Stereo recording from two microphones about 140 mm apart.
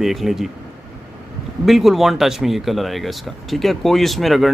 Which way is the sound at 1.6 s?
Centre (ahead or behind).